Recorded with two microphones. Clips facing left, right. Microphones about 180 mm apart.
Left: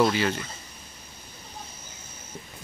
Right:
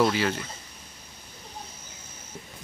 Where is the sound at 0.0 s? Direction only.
5° right (ahead or behind).